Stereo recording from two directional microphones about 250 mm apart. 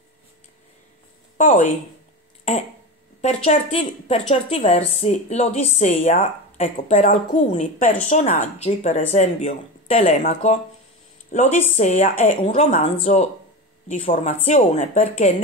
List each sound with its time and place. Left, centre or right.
1.4 s speech: left
3.2 s speech: left